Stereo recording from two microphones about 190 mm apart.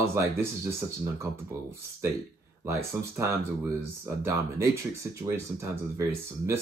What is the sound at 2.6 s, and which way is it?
Speech, 15° right (ahead or behind).